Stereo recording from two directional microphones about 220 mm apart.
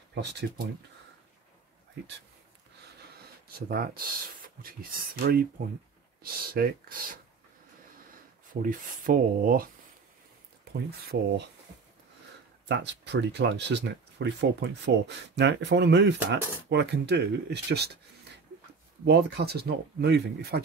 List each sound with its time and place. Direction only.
0.1 s speech: 50° right (ahead or behind)
3.4 s speech: 45° right (ahead or behind)
5.2 s speech: 40° right (ahead or behind)
8.6 s speech: 40° right (ahead or behind)
10.7 s speech: 45° right (ahead or behind)
12.6 s speech: 55° right (ahead or behind)
19.0 s speech: 45° right (ahead or behind)